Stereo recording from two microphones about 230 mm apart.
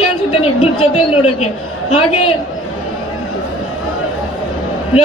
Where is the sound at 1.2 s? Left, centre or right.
Left.